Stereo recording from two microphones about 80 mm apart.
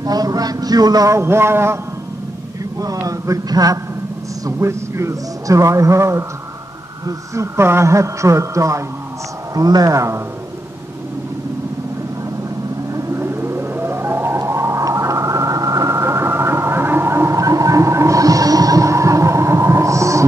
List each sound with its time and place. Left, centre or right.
0.0 s a man's voice: right
3.0 s a man's voice: right
4.5 s a man's voice: right
9.6 s a man's voice: right
12.9 s whale vocalization: right